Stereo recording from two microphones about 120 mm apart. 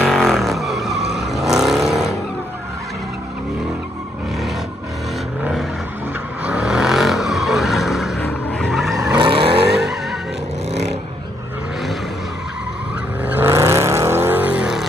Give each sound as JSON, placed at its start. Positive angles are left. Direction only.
{"t": 0.0, "sound": "vehicle", "side_deg": 5}
{"t": 6.4, "sound": "vehicle", "side_deg": -10}
{"t": 8.2, "sound": "vehicle", "side_deg": 15}
{"t": 9.1, "sound": "vehicle", "side_deg": -45}
{"t": 13.2, "sound": "vehicle", "side_deg": -15}